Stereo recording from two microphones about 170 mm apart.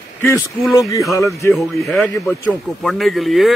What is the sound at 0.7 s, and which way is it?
Speech, 20° left (ahead or behind).